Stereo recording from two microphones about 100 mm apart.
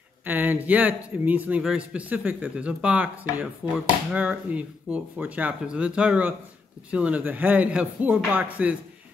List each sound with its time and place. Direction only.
0.2 s speech: 20° right (ahead or behind)